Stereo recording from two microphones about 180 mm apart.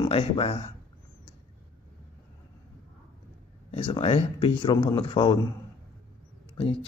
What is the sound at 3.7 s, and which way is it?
Speech, 30° left (ahead or behind).